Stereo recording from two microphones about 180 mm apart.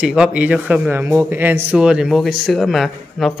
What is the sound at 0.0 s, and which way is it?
A man's voice, 5° right (ahead or behind).